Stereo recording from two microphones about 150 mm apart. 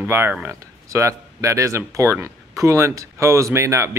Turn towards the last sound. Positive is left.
turn(degrees=-20)  # may be behind; listen again after turning